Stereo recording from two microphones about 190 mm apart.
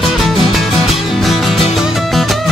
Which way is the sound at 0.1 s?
Centre (ahead or behind).